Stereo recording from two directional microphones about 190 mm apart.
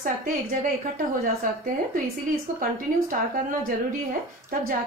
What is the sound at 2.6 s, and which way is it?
Speech, 45° right (ahead or behind).